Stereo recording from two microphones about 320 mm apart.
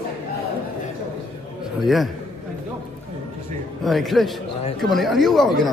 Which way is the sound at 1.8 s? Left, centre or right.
Centre.